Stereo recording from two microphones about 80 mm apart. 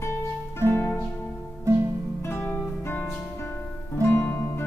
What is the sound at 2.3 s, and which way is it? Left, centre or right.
Music, left.